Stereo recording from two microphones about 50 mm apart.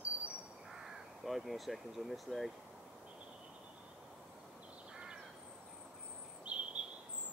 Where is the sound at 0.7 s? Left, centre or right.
Centre.